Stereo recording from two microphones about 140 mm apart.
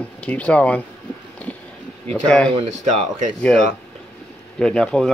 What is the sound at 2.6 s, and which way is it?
Speech, 55° right (ahead or behind).